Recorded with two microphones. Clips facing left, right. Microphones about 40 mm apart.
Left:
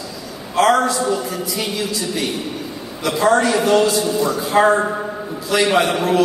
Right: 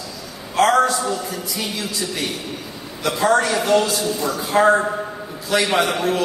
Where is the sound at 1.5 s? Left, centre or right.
Left.